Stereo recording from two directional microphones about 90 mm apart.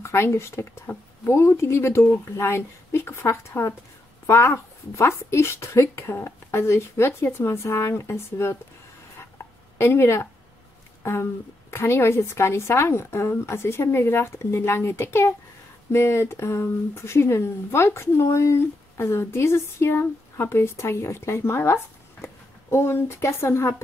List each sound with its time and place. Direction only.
0.0 s speech: 30° left (ahead or behind)
9.8 s speech: 30° left (ahead or behind)